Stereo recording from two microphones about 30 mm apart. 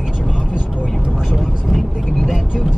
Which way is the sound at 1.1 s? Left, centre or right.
Centre.